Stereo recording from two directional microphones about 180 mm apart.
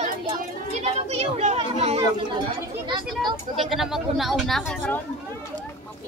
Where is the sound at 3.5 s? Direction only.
Centre (ahead or behind).